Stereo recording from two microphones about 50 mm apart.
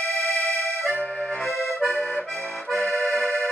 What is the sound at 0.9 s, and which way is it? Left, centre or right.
Accordion, left.